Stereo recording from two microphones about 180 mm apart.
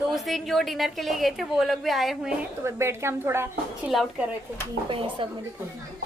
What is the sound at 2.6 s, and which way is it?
Speech, 15° right (ahead or behind).